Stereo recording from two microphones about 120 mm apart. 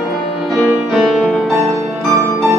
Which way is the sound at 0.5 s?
Centre (ahead or behind).